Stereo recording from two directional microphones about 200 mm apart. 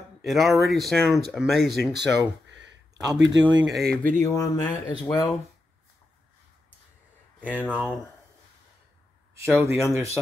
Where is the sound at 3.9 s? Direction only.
45° right (ahead or behind).